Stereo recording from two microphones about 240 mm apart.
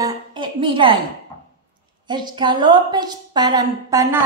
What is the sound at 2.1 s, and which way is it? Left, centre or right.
A woman's voice, centre.